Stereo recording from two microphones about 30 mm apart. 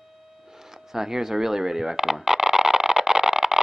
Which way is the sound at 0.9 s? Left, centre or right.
Centre.